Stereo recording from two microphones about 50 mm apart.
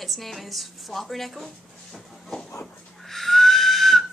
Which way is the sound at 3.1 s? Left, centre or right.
Centre.